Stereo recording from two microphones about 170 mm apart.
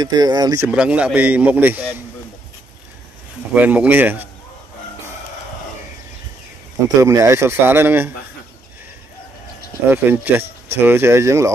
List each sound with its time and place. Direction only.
0.0 s speech: 25° right (ahead or behind)
0.7 s speech: 5° right (ahead or behind)
3.5 s speech: 10° right (ahead or behind)
7.0 s speech: 15° right (ahead or behind)
9.8 s speech: 10° right (ahead or behind)